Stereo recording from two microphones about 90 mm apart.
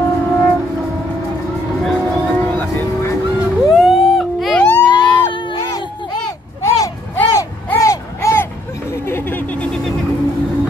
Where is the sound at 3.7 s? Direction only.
Centre (ahead or behind).